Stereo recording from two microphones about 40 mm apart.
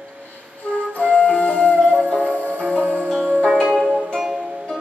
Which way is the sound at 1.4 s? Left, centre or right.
Left.